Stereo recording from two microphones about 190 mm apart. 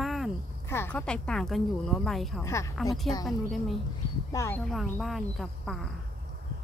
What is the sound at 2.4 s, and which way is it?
Speech, 15° left (ahead or behind).